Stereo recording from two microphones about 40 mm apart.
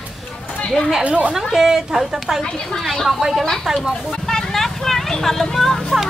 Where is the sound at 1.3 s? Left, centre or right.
Centre.